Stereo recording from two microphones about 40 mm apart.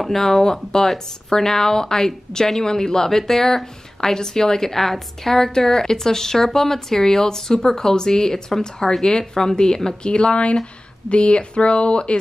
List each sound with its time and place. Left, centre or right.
0.0 s speech: centre
10.0 s speech: left